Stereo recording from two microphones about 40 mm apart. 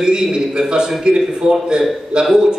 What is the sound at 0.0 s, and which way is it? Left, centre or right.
Mantra, centre.